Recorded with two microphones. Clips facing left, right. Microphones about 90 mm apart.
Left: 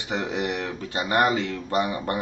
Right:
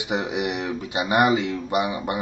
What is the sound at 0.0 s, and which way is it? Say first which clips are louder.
Speech: right 2 dB; 15° right (ahead or behind).